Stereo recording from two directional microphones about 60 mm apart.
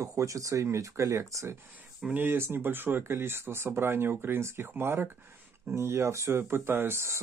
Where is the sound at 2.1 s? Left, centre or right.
Right.